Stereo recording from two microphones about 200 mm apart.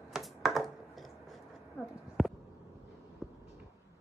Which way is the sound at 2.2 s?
Centre (ahead or behind).